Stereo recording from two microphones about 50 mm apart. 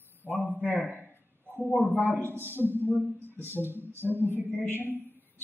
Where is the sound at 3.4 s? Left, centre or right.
Left.